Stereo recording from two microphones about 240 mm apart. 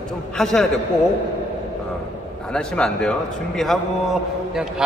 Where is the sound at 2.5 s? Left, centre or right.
Centre.